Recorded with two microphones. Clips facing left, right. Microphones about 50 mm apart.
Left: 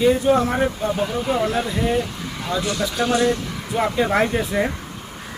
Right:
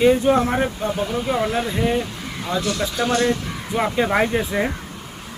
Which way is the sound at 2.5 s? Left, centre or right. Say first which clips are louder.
Even; right.